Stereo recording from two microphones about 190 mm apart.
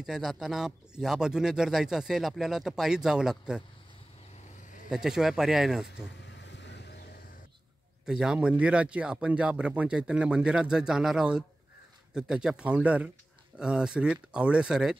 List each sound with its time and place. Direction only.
0.0 s speech: centre (ahead or behind)
4.8 s speech: 5° right (ahead or behind)
6.2 s vehicle: 70° left (ahead or behind)
8.0 s speech: 5° right (ahead or behind)